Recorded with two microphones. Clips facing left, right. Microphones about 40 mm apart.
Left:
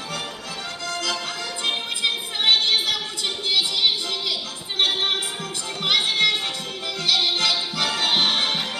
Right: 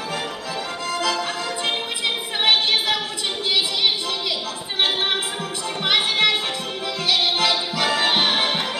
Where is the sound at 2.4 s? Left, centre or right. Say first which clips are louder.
Right 1 dB; centre.